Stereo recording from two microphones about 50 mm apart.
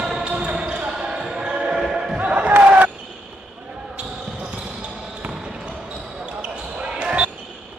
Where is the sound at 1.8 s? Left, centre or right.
Centre.